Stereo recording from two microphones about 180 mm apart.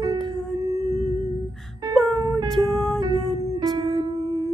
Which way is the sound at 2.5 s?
Centre (ahead or behind).